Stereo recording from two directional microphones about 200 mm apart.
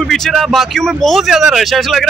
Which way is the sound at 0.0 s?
Centre (ahead or behind).